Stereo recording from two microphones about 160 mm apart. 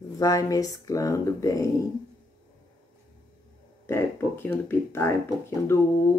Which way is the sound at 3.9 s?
15° left (ahead or behind).